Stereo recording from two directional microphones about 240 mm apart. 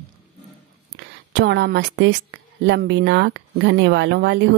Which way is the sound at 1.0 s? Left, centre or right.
Right.